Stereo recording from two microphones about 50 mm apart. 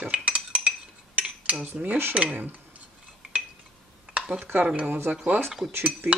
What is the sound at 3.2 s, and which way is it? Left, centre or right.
Cutlery, right.